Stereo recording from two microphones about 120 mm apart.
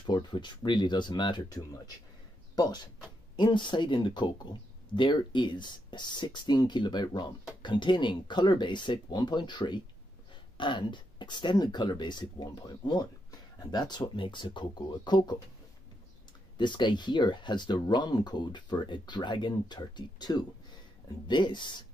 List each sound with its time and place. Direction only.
0.0 s speech: 40° left (ahead or behind)
16.5 s speech: 40° left (ahead or behind)